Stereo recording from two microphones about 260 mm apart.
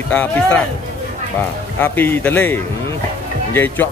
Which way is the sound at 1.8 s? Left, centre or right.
Centre.